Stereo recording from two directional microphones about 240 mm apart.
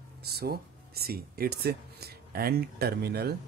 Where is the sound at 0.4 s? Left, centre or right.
Right.